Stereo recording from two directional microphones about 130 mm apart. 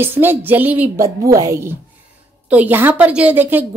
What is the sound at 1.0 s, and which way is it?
Speech, 25° right (ahead or behind).